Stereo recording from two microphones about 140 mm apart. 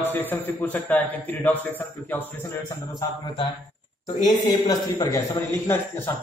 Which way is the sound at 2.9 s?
30° left (ahead or behind).